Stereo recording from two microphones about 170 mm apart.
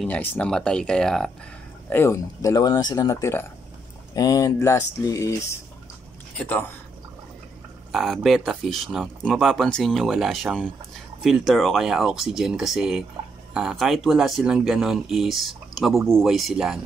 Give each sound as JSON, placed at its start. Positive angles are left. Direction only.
{"t": 0.0, "sound": "speech", "side_deg": 10}
{"t": 1.9, "sound": "speech", "side_deg": 15}
{"t": 7.9, "sound": "speech", "side_deg": 0}